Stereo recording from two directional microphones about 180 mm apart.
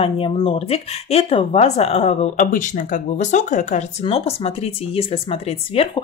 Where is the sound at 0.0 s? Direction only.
30° left (ahead or behind).